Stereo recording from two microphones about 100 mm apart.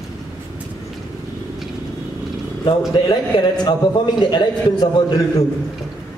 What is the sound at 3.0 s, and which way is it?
A man's voice, 45° left (ahead or behind).